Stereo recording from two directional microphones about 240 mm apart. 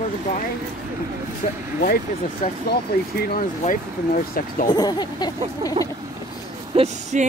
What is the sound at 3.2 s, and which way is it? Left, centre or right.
Speech, left.